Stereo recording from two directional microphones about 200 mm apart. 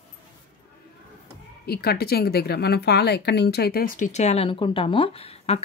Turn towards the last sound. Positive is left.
turn(degrees=30)  # may be behind; listen again after turning